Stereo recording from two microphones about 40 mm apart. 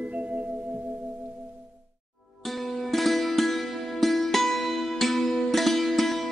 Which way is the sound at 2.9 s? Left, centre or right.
Centre.